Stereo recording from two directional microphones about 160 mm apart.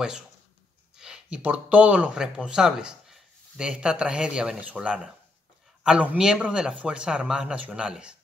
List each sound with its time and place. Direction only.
0.9 s speech: 5° right (ahead or behind)